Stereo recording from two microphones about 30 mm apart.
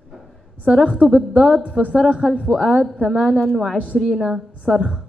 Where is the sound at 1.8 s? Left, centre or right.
Centre.